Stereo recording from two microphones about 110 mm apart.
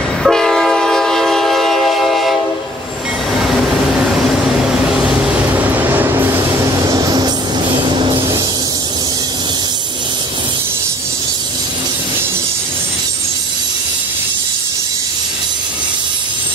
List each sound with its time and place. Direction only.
0.2 s train: 5° left (ahead or behind)
5.6 s train: 15° right (ahead or behind); by 8.2 s 50° right (ahead or behind)